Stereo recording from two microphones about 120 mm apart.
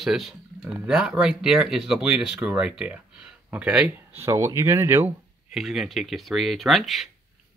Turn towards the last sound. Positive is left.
turn(degrees=0)  # may be behind; listen again after turning